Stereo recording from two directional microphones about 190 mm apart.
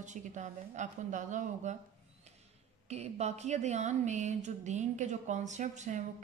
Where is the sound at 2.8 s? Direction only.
35° right (ahead or behind).